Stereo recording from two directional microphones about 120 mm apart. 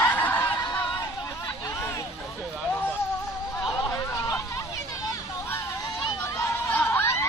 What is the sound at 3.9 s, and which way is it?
Hubbub, 25° left (ahead or behind).